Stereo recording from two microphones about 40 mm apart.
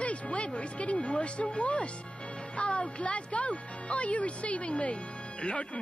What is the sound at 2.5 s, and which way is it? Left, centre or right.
A man's voice, left.